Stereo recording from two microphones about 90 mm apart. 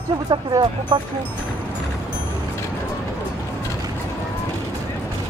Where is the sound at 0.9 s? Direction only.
55° right (ahead or behind).